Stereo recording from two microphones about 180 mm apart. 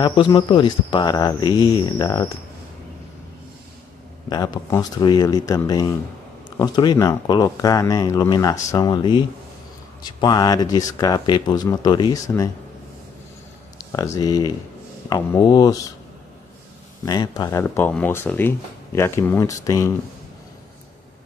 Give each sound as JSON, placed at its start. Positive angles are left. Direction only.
{"t": 0.0, "sound": "speech", "side_deg": 25}
{"t": 4.3, "sound": "speech", "side_deg": 20}
{"t": 13.9, "sound": "speech", "side_deg": 20}
{"t": 17.0, "sound": "speech", "side_deg": 20}